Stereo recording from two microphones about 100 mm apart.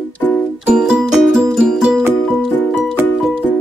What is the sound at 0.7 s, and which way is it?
Music, 5° right (ahead or behind).